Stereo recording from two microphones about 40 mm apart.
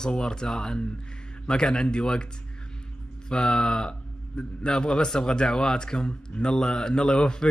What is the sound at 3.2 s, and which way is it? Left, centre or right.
A man's voice, left.